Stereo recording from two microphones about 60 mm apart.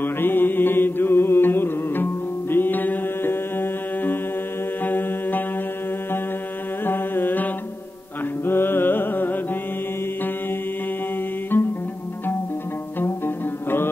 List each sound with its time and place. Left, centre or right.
0.0 s music: left
2.5 s mantra: left
6.9 s carnatic music: left
8.5 s music: left
11.5 s music: left